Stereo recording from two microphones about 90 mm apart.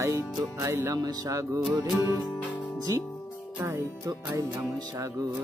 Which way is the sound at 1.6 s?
5° right (ahead or behind).